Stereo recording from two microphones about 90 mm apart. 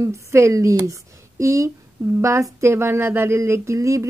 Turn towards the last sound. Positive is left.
turn(degrees=-35)  # may be behind; listen again after turning